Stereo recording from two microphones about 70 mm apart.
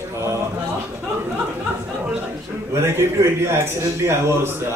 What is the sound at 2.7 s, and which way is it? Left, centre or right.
A man's voice, right.